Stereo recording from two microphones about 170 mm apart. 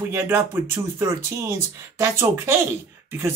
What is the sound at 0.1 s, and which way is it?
Speech, 15° right (ahead or behind).